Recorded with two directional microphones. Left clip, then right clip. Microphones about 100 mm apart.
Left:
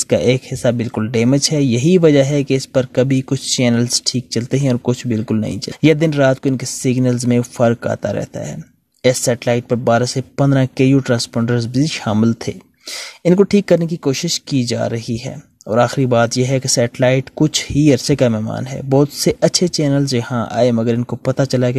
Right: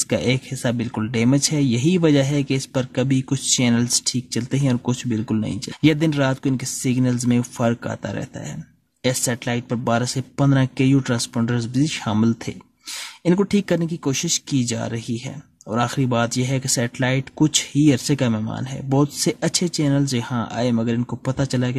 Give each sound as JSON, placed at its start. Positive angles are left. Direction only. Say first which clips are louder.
{"t": 0.1, "sound": "speech", "louder": "left 9 dB", "side_deg": 45}
{"t": 18.3, "sound": "speech", "louder": "left 5 dB", "side_deg": 40}